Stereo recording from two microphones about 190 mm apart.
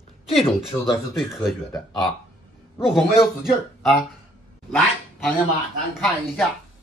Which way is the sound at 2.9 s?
Centre (ahead or behind).